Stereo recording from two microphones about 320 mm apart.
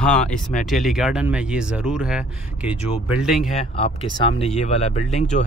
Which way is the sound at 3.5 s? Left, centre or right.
Centre.